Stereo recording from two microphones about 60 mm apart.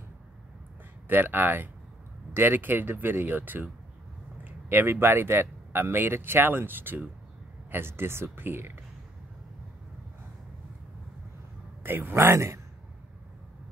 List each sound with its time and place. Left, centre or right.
1.0 s speech: right
11.8 s a man's voice: right